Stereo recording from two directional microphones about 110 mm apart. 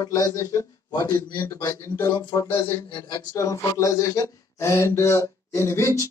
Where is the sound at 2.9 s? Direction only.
45° left (ahead or behind); by 6.0 s 25° left (ahead or behind).